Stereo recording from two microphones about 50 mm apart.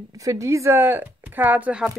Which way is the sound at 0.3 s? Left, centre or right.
Right.